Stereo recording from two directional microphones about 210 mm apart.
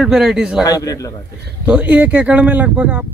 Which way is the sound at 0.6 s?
15° left (ahead or behind).